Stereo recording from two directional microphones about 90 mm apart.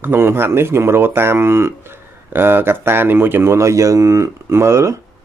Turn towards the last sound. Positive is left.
turn(degrees=-30)  # may be behind; listen again after turning